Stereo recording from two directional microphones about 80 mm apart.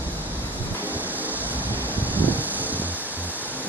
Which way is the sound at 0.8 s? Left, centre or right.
Right.